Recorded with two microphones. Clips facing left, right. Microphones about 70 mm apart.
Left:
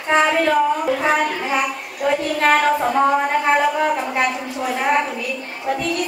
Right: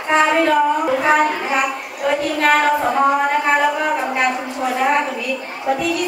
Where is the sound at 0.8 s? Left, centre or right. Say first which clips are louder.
Right 3 dB; right.